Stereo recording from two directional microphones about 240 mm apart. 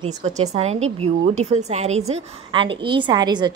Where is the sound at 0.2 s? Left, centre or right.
Right.